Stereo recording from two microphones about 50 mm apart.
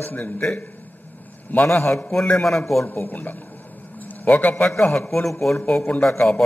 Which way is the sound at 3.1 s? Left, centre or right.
Left.